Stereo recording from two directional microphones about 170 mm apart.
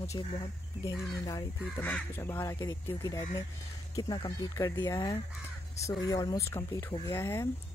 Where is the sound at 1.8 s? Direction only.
10° left (ahead or behind).